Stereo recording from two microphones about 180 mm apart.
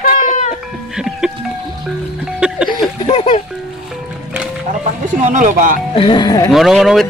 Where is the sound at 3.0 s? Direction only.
35° left (ahead or behind).